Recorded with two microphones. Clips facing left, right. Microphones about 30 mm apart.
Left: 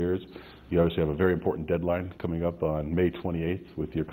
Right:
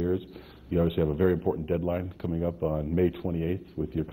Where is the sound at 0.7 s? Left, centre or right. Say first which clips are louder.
Left 1 dB; left.